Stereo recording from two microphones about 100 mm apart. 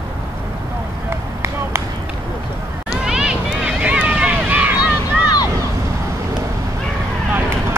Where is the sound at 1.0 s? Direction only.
30° right (ahead or behind).